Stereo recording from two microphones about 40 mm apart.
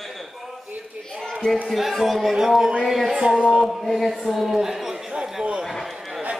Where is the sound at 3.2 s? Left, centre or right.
Right.